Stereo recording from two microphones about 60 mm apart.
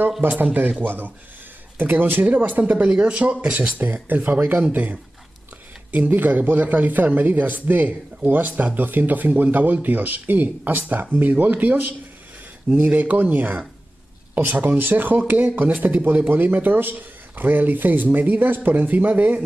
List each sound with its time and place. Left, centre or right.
0.2 s speech: right; by 3.3 s centre
3.8 s speech: right
5.9 s speech: right